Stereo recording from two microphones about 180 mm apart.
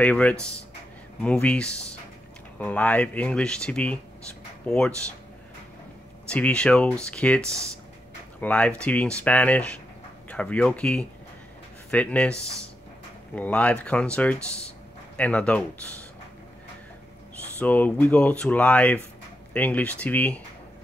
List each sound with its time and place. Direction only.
0.0 s speech: 10° left (ahead or behind)
6.2 s speech: 5° left (ahead or behind)
17.6 s speech: 10° left (ahead or behind)